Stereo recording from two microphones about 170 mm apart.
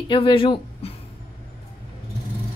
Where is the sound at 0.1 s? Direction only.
30° left (ahead or behind).